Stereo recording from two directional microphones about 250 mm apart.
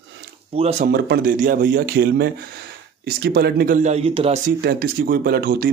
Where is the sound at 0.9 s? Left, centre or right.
Right.